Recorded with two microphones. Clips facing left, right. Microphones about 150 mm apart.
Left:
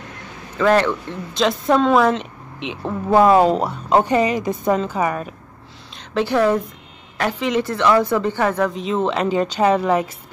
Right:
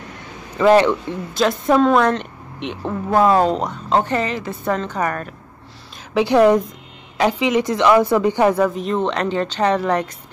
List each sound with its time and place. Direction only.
0.6 s a woman's voice: 15° right (ahead or behind)
1.3 s a woman's voice: centre (ahead or behind)
5.9 s a woman's voice: 15° right (ahead or behind); by 10.1 s 5° left (ahead or behind)